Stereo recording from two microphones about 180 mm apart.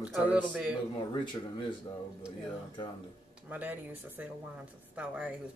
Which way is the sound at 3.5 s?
10° right (ahead or behind).